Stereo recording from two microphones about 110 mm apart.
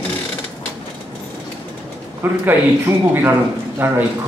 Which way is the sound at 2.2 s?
20° right (ahead or behind).